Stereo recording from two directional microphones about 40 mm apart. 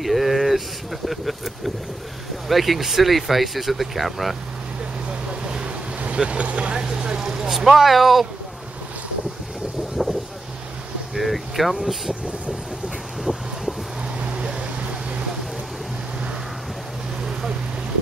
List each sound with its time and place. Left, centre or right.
0.0 s a sound: centre
1.0 s speech: centre
5.5 s speech: right; by 8.3 s centre
10.0 s vehicle: centre
11.1 s speech: centre
13.2 s a sound: centre